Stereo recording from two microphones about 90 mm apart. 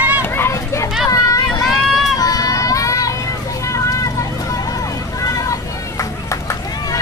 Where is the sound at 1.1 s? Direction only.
40° left (ahead or behind).